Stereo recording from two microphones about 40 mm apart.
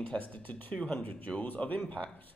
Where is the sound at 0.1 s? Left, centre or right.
Left.